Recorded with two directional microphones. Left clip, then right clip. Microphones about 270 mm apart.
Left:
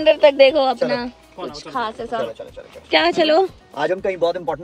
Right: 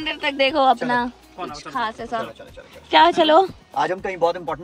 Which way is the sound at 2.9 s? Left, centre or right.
Right.